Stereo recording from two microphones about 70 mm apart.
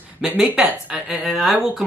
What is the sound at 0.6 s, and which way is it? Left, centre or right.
Speech, centre.